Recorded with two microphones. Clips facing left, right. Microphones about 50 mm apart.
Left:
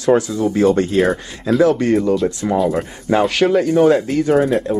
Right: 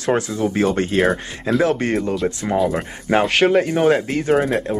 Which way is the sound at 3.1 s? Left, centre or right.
Right.